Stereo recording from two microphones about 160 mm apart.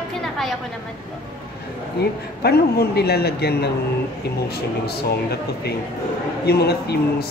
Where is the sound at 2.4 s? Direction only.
80° left.